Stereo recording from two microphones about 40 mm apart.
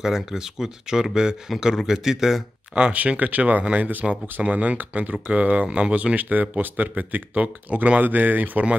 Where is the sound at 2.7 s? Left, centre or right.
Right.